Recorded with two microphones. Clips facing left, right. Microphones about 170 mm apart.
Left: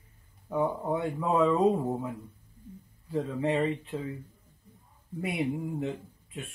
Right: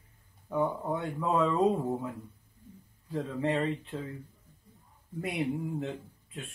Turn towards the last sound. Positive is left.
turn(degrees=10)  # may be behind; listen again after turning